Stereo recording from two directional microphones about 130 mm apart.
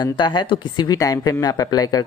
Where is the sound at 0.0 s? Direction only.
35° left (ahead or behind).